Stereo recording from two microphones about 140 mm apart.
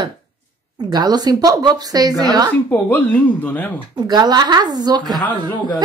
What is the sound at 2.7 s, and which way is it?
Speech, 15° left (ahead or behind).